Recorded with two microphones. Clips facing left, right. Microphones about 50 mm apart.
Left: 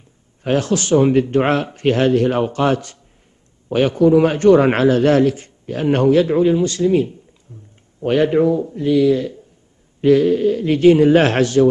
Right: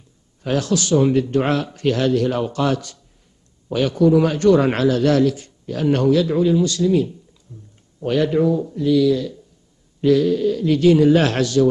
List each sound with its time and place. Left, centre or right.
0.4 s a man's voice: left
7.5 s a sound: left
8.0 s a man's voice: left